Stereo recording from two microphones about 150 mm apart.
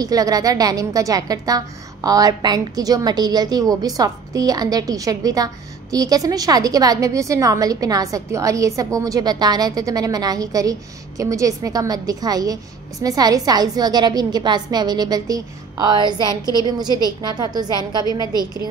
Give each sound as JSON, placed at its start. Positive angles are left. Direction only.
{"t": 0.0, "sound": "a woman's voice", "side_deg": -25}